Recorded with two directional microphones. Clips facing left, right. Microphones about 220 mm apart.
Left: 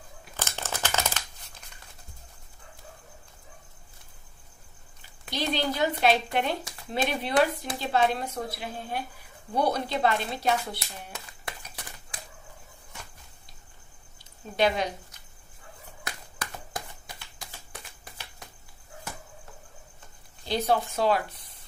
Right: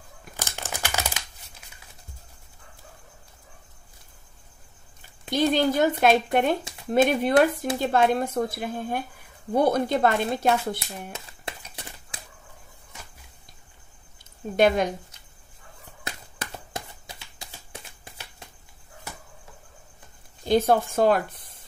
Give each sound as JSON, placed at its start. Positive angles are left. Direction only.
{"t": 0.4, "sound": "crumpling", "side_deg": -15}
{"t": 5.3, "sound": "speech", "side_deg": -50}
{"t": 11.1, "sound": "a sound", "side_deg": -25}
{"t": 14.6, "sound": "speech", "side_deg": -50}
{"t": 16.0, "sound": "a sound", "side_deg": -25}
{"t": 20.4, "sound": "speech", "side_deg": -50}